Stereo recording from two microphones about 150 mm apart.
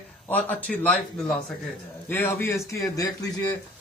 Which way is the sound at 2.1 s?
15° left (ahead or behind).